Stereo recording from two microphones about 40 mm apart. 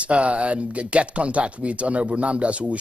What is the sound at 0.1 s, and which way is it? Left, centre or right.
Speech, right.